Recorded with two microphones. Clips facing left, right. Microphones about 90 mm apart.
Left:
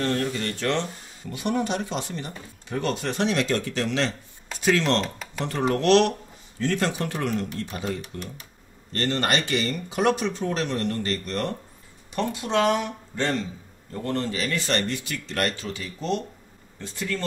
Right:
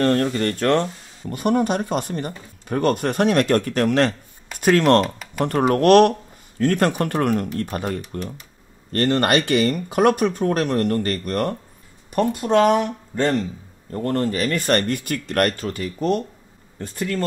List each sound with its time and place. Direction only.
0.0 s speech: 50° right (ahead or behind)
5.0 s speech: 5° right (ahead or behind)
5.4 s speech: 50° right (ahead or behind)